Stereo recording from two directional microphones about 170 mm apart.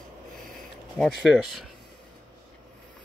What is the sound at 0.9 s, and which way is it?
Speech, centre (ahead or behind).